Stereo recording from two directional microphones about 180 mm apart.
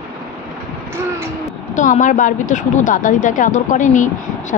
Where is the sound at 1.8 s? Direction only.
45° left (ahead or behind).